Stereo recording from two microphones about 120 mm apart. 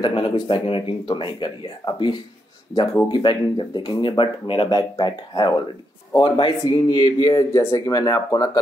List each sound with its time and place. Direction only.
0.0 s speech: 45° left (ahead or behind)
2.7 s speech: 35° left (ahead or behind)